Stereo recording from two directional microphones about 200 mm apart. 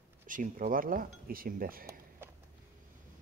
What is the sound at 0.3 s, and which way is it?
Speech, 40° right (ahead or behind).